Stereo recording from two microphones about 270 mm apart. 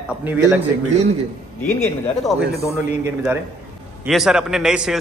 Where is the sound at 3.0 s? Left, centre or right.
Centre.